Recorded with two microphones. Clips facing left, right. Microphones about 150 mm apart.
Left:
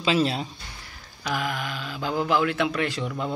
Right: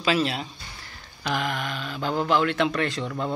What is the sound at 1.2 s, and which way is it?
Speech, 5° left (ahead or behind).